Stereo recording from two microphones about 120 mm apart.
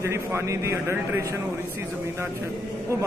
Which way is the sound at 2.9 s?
25° right (ahead or behind).